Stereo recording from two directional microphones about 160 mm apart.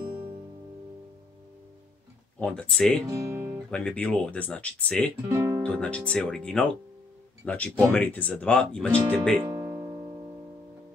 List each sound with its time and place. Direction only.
2.4 s speech: 5° left (ahead or behind)
3.1 s guitar: 20° right (ahead or behind)
3.7 s speech: 5° left (ahead or behind)
5.3 s music: 15° right (ahead or behind)
5.6 s speech: 10° left (ahead or behind)
9.4 s music: 15° right (ahead or behind)